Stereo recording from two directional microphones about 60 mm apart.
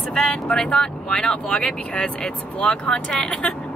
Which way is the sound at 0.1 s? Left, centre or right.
Centre.